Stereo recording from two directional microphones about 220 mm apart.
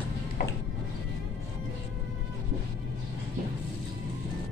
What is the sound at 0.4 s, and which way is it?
Music, 40° left (ahead or behind).